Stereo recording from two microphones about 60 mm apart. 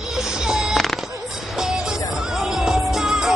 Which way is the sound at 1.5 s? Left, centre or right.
Centre.